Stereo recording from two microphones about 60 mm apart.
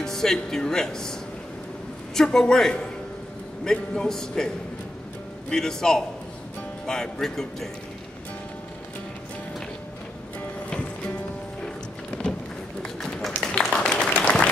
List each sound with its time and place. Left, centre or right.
0.0 s speech: centre
2.1 s a man's voice: centre
5.5 s a man's voice: centre
10.7 s music: centre
12.1 s a sound: centre
12.8 s run: centre
13.4 s a sound: centre